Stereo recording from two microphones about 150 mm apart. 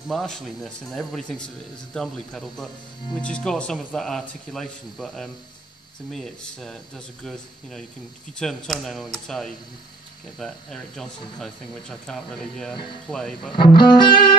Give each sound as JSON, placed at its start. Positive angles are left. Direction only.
{"t": 0.1, "sound": "speech", "side_deg": 0}
{"t": 8.4, "sound": "speech", "side_deg": 0}
{"t": 13.5, "sound": "music", "side_deg": 30}